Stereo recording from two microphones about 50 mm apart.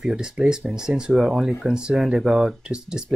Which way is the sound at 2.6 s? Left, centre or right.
Centre.